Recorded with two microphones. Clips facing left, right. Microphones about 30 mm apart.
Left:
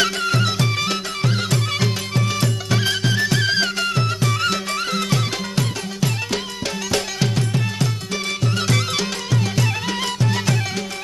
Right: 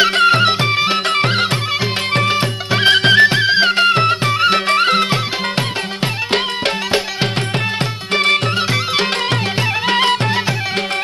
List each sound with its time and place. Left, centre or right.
0.1 s music: right
1.1 s music: right
3.3 s music: right
4.6 s music: right
8.5 s music: right
9.6 s music: right